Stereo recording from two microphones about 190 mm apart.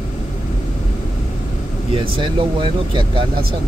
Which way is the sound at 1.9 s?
25° right (ahead or behind).